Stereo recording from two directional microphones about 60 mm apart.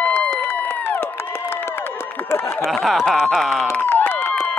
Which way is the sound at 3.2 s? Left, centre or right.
Centre.